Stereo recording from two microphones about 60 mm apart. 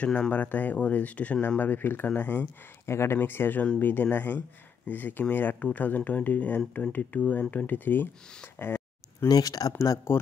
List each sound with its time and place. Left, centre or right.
0.0 s speech: centre
1.6 s speech: left
2.9 s speech: left
3.2 s speech: left
9.3 s speech: left